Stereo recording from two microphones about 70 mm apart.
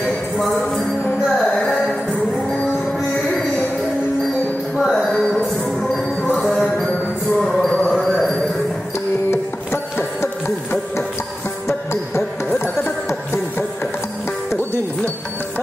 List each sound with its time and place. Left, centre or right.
1.4 s music: centre
4.7 s music: centre
7.7 s music: centre
8.0 s a sound: centre
9.3 s music: left